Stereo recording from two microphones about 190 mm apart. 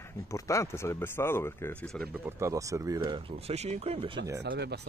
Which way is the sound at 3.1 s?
35° right (ahead or behind).